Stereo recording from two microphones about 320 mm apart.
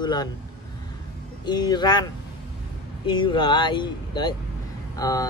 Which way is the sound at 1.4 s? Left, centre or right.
Centre.